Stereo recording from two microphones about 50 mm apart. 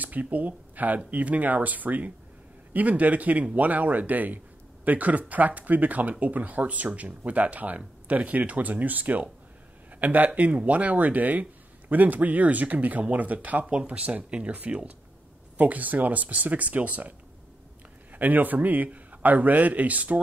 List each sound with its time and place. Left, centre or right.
0.0 s speech: right
18.1 s speech: right